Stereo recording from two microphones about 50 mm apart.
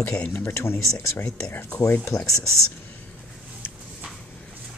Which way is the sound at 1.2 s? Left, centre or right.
Left.